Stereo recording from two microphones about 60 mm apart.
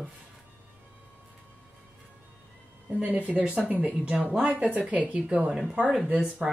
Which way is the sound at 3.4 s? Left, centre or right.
Centre.